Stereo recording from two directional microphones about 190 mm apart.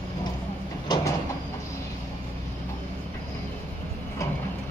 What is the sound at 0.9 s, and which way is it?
Vehicle, 20° left (ahead or behind).